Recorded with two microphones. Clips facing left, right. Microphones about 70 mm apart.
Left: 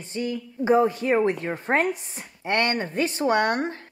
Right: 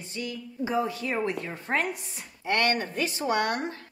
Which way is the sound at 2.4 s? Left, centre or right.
Left.